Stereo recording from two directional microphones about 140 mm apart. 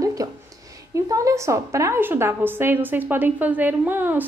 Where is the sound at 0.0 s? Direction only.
25° right (ahead or behind).